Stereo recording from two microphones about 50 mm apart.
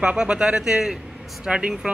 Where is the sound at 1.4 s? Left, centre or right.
Right.